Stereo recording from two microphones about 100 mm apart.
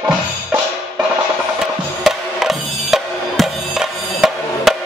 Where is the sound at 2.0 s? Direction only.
5° right (ahead or behind).